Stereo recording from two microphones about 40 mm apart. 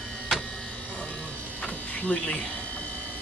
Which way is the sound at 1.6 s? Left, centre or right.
Left.